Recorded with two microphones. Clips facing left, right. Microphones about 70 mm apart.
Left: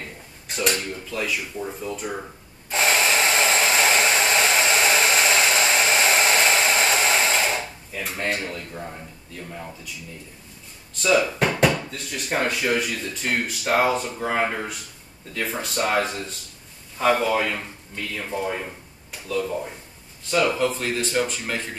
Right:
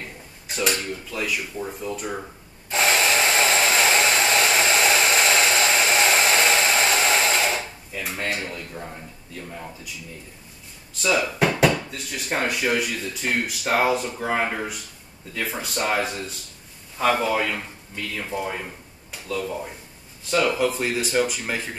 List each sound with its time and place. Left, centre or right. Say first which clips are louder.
0.5 s speech: even; centre
2.7 s hair dryer: even; centre
11.0 s speech: left 1 dB; centre
20.2 s speech: even; centre